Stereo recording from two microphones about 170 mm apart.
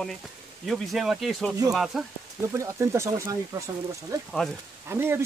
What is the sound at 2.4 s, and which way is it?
Speech, 15° right (ahead or behind).